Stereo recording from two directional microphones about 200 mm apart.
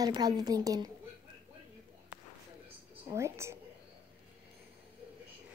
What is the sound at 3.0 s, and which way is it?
Speech, 15° right (ahead or behind).